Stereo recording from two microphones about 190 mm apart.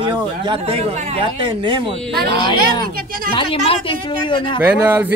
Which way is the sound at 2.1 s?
55° right (ahead or behind).